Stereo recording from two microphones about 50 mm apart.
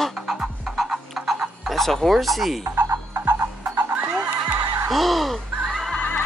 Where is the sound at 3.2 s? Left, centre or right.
Right.